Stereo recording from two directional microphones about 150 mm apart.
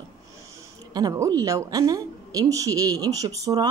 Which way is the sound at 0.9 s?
25° right (ahead or behind).